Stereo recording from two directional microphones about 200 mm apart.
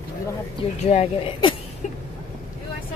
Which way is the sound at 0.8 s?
30° left (ahead or behind).